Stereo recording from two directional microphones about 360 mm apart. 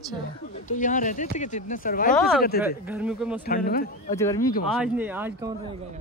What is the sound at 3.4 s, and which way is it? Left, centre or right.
Speech, left.